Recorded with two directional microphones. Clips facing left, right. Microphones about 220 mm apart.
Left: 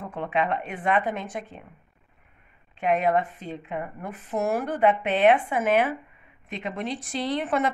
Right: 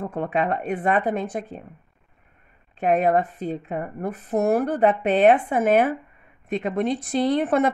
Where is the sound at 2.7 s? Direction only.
40° right (ahead or behind).